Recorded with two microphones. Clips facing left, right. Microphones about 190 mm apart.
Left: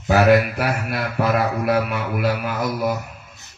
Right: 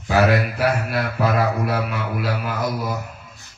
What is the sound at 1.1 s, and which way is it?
Mantra, 60° left (ahead or behind).